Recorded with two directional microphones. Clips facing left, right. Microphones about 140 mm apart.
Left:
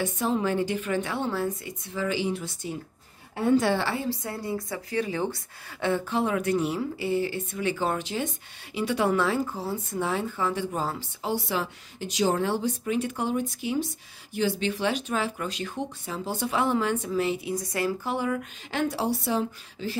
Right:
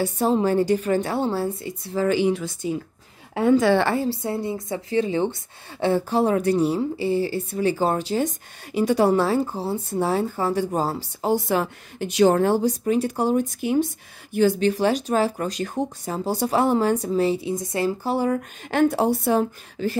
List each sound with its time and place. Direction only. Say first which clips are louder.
0.0 s speech: right 6 dB; 35° right (ahead or behind)
3.3 s a woman's voice: right 5 dB; 90° right
3.8 s a woman's voice: right 7 dB; 45° right (ahead or behind)
4.1 s speech: right 5 dB; 25° right (ahead or behind); by 13.8 s 50° right (ahead or behind)
14.6 s speech: right 7 dB; 40° right (ahead or behind)